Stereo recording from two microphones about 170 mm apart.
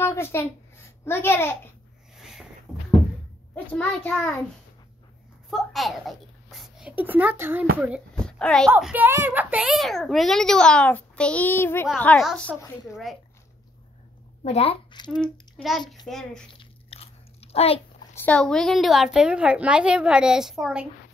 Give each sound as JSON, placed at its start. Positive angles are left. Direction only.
{"t": 0.0, "sound": "a child's voice", "side_deg": 15}
{"t": 2.1, "sound": "a sound", "side_deg": 0}
{"t": 3.5, "sound": "a child's voice", "side_deg": 10}
{"t": 5.5, "sound": "a child's voice", "side_deg": 0}
{"t": 8.2, "sound": "a sound", "side_deg": 5}
{"t": 8.7, "sound": "a child's voice", "side_deg": -10}
{"t": 14.4, "sound": "a woman's voice", "side_deg": 35}
{"t": 15.5, "sound": "a child's voice", "side_deg": 0}
{"t": 16.5, "sound": "chewing", "side_deg": 35}
{"t": 18.1, "sound": "a child's voice", "side_deg": 10}